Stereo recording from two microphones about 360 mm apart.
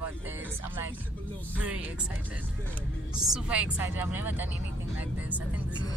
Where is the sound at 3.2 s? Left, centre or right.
Centre.